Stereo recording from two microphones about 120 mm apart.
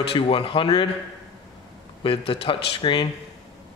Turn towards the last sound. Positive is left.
turn(degrees=40)  # may be behind; listen again after turning